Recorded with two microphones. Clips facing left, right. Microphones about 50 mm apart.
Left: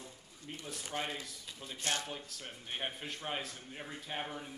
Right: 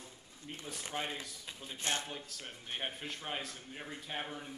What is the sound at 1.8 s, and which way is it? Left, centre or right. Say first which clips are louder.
Speech: even; right.